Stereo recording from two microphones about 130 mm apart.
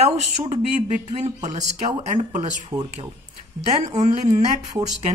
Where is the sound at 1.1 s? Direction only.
65° right (ahead or behind).